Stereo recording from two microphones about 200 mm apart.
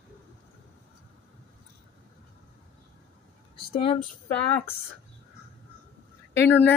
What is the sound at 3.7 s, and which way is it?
Speech, 25° left (ahead or behind).